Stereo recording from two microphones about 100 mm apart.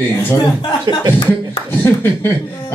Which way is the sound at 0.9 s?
45° right (ahead or behind).